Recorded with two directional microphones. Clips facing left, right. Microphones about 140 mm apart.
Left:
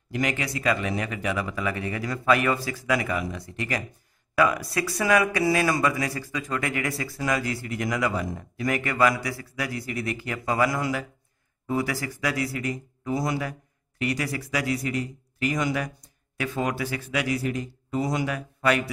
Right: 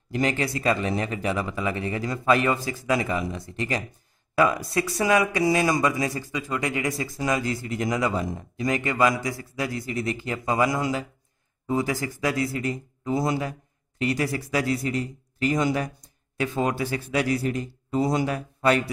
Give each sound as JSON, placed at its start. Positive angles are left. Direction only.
{"t": 0.1, "sound": "a man's voice", "side_deg": -30}